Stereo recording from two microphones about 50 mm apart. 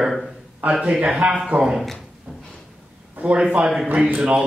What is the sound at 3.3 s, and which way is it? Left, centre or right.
Speech, centre.